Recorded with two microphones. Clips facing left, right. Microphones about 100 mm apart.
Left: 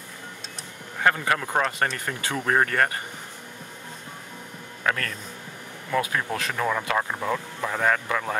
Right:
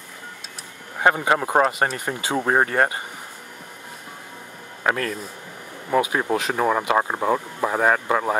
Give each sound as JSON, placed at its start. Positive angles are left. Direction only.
{"t": 0.9, "sound": "speech", "side_deg": -20}
{"t": 4.8, "sound": "speech", "side_deg": -20}